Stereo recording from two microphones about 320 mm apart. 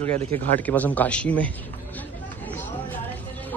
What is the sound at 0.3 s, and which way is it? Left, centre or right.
Speech, centre.